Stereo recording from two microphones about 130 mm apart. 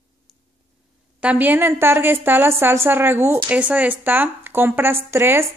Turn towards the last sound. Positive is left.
turn(degrees=-20)  # may be behind; listen again after turning